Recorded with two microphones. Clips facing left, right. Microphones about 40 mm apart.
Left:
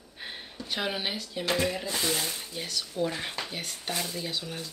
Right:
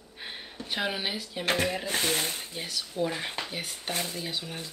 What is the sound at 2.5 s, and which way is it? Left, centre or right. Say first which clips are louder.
Speech: left 1 dB; centre.